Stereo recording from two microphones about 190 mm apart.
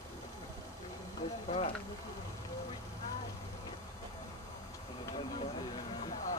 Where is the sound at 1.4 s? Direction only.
35° left (ahead or behind).